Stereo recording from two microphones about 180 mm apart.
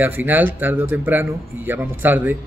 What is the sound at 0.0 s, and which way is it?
Speech, 10° right (ahead or behind).